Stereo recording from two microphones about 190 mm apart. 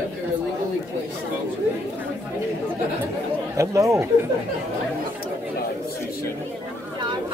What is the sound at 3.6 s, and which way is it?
Speech, 15° right (ahead or behind).